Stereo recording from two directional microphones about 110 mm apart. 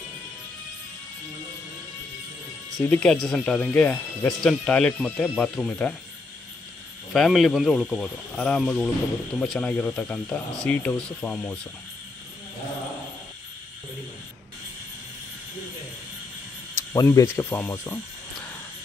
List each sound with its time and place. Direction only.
2.8 s speech: 10° left (ahead or behind)
7.1 s speech: centre (ahead or behind)
16.9 s a sound: 30° left (ahead or behind)